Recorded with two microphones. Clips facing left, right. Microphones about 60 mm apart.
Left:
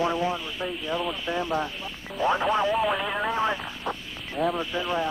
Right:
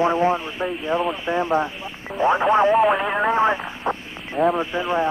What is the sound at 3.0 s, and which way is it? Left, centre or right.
Speech, right.